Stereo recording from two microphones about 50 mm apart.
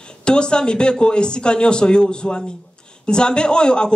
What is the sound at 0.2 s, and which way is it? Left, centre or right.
A woman's voice, centre.